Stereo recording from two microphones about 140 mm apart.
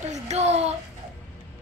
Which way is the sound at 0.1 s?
55° right (ahead or behind).